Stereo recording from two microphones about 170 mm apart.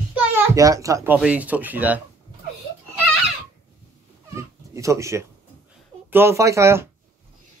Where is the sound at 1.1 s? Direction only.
10° right (ahead or behind).